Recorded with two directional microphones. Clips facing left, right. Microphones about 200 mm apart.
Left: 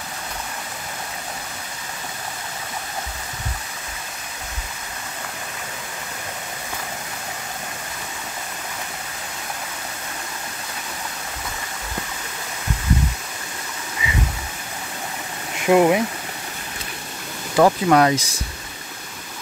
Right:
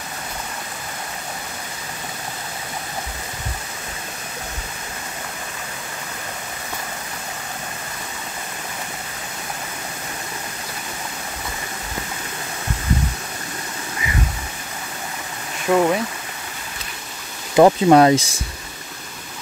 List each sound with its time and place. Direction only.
15.6 s speech: 15° left (ahead or behind)
17.6 s speech: 20° right (ahead or behind)